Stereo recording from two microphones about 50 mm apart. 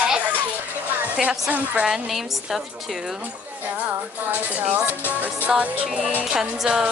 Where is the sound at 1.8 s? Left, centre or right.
Centre.